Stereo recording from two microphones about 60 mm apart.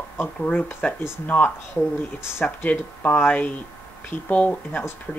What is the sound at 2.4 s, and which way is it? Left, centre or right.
Speech, left.